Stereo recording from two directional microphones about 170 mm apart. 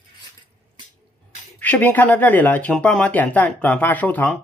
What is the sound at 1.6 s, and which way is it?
Speech, 10° left (ahead or behind).